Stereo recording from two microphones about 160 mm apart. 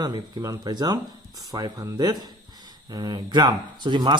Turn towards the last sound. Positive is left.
turn(degrees=-25)  # may be behind; listen again after turning